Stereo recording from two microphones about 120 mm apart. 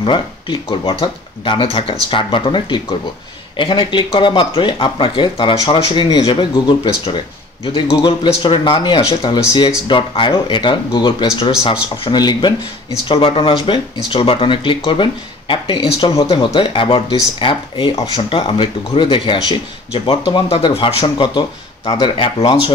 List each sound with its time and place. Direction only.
0.0 s speech: 45° left (ahead or behind)
8.4 s speech: 45° left (ahead or behind)
12.1 s speech: 35° left (ahead or behind)